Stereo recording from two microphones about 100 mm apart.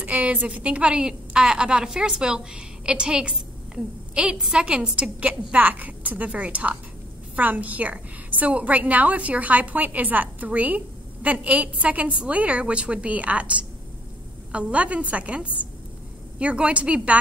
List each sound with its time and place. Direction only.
0.0 s a woman's voice: 15° right (ahead or behind)